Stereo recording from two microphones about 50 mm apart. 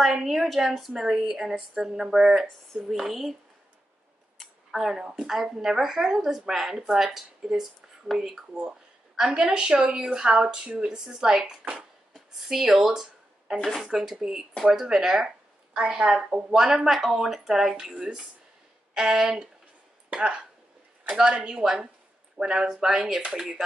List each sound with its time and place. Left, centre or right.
0.0 s a woman's voice: centre
4.4 s a woman's voice: centre
9.3 s a woman's voice: right
12.1 s a sound: centre
13.7 s a woman's voice: centre
17.7 s a woman's voice: centre